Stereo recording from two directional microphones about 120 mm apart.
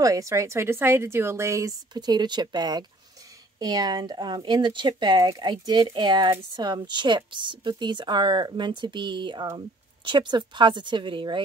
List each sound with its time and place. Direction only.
0.0 s a woman's voice: 25° right (ahead or behind); by 11.4 s 45° right (ahead or behind)